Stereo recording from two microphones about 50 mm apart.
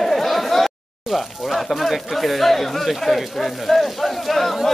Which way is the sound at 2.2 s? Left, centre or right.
Centre.